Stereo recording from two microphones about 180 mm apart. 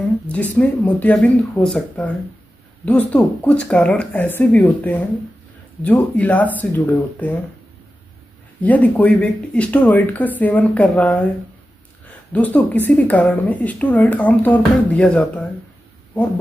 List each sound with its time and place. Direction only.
0.6 s speech: 10° left (ahead or behind)
8.6 s speech: 10° left (ahead or behind)
12.3 s speech: 10° left (ahead or behind)